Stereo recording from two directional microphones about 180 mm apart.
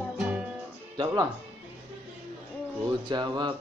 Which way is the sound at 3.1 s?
25° right (ahead or behind).